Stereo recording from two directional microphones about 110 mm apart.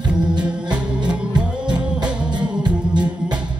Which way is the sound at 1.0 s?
10° right (ahead or behind).